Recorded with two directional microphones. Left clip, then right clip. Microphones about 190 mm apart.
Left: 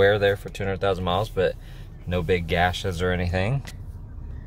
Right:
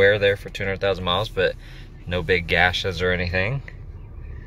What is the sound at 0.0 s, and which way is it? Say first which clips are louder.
Speech: right 2 dB; 25° left (ahead or behind).